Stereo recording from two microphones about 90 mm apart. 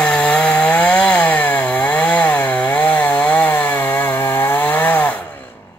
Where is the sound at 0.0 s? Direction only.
15° left (ahead or behind).